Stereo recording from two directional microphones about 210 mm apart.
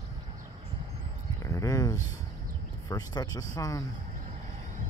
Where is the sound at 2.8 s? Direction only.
20° left (ahead or behind).